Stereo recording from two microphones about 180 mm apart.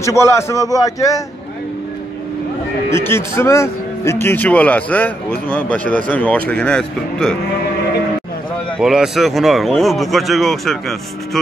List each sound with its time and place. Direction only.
0.0 s speech: 15° left (ahead or behind)
2.9 s speech: 15° left (ahead or behind)
8.7 s speech: 5° right (ahead or behind)